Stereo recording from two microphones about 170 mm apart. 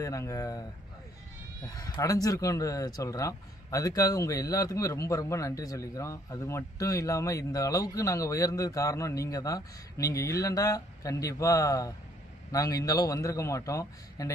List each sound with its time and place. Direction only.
0.0 s speech: 20° left (ahead or behind)